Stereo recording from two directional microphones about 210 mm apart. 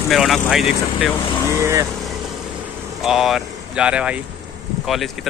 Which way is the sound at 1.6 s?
15° right (ahead or behind).